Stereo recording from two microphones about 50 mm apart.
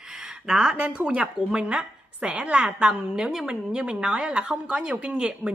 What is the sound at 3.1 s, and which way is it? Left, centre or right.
A woman's voice, centre.